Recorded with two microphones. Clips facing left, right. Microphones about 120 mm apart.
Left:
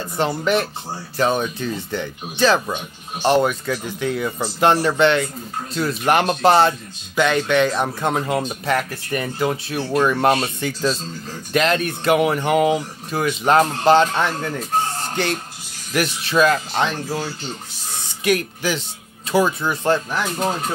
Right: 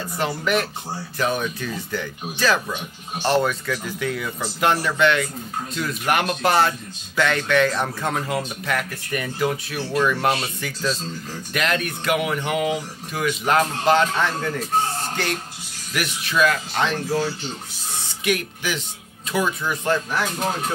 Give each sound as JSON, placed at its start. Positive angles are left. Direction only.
{"t": 0.2, "sound": "speech", "side_deg": 30}
{"t": 15.9, "sound": "speech", "side_deg": 35}
{"t": 18.2, "sound": "speech", "side_deg": 35}